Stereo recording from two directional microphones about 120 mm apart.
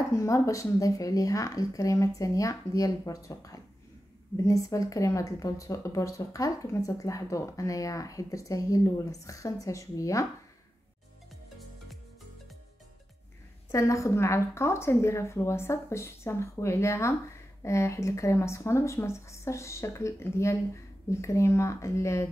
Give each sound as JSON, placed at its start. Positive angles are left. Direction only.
{"t": 0.1, "sound": "speech", "side_deg": 25}
{"t": 13.7, "sound": "speech", "side_deg": 25}